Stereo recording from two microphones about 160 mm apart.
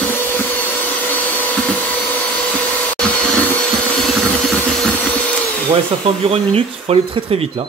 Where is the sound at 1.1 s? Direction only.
10° left (ahead or behind).